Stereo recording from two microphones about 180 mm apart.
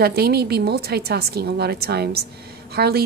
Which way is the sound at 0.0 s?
60° right (ahead or behind).